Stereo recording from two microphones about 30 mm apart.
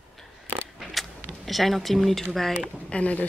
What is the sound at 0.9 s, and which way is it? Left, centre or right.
Speech, centre.